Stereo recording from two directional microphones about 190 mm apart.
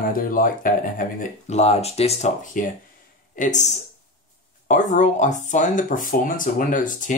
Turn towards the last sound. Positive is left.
turn(degrees=45)  # may be behind; listen again after turning